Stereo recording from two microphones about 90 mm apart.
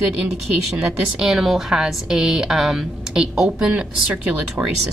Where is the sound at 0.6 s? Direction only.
5° right (ahead or behind).